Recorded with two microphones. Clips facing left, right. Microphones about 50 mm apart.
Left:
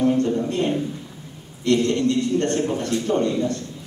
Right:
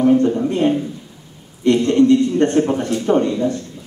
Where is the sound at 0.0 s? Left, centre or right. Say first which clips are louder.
Right 5 dB; right.